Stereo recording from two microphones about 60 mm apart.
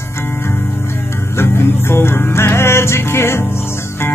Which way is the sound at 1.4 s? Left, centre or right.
Left.